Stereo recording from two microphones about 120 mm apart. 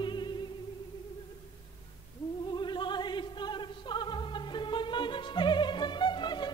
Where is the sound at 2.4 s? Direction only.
40° left (ahead or behind).